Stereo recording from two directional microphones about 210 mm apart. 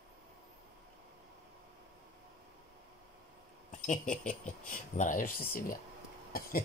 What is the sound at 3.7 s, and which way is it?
Speech, 35° left (ahead or behind).